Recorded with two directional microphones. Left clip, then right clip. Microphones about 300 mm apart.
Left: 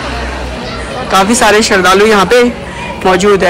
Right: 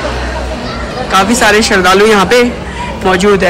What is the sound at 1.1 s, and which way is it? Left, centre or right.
Speech, centre.